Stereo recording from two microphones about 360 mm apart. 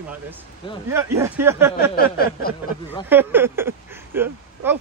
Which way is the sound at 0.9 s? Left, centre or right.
Centre.